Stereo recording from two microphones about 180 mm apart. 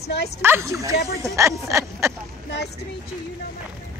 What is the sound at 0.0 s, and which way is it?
Speech, 65° left (ahead or behind).